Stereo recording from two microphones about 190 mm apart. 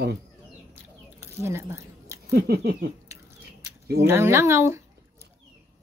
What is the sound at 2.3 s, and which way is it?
Speech, 55° right (ahead or behind).